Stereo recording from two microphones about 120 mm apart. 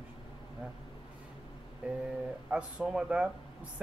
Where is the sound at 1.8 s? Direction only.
10° right (ahead or behind).